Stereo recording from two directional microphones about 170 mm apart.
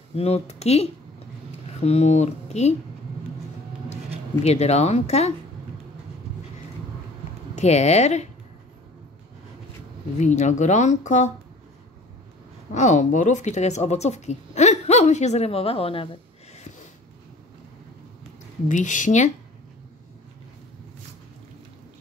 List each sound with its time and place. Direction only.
0.1 s speech: 40° left (ahead or behind)
4.4 s speech: 40° left (ahead or behind)
7.5 s speech: 40° left (ahead or behind)
10.1 s speech: 45° left (ahead or behind)
12.7 s speech: 45° left (ahead or behind)
18.7 s speech: 45° left (ahead or behind)